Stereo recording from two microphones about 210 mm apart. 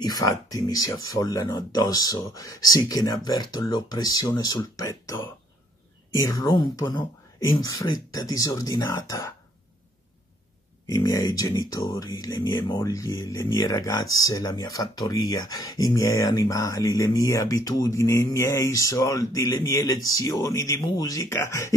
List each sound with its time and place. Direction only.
0.0 s speech: 15° left (ahead or behind)
10.9 s speech: 15° left (ahead or behind)